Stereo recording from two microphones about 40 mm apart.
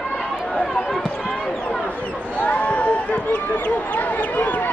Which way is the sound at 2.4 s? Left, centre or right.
Left.